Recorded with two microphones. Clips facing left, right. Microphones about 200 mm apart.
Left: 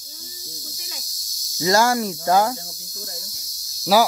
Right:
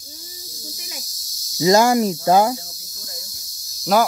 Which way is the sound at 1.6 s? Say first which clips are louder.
Right 4 dB; 20° right (ahead or behind).